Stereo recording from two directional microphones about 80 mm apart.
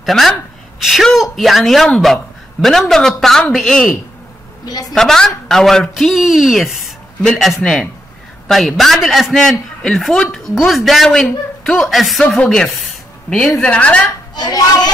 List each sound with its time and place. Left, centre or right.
0.0 s a man's voice: centre
4.6 s a woman's voice: left
4.9 s a man's voice: centre
14.3 s a child's voice: left